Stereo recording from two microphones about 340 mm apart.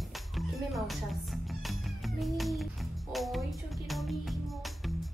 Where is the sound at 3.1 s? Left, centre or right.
Centre.